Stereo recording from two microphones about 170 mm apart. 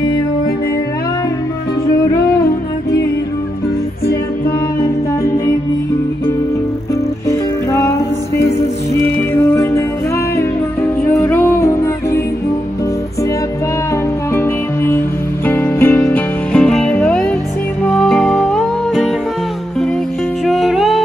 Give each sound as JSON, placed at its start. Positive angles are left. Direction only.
{"t": 7.2, "sound": "music", "side_deg": 20}
{"t": 14.3, "sound": "music", "side_deg": 15}
{"t": 16.5, "sound": "music", "side_deg": 5}
{"t": 20.4, "sound": "music", "side_deg": 0}